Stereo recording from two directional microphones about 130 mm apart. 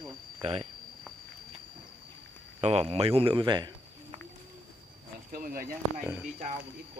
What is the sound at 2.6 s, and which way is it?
Speech, 50° right (ahead or behind).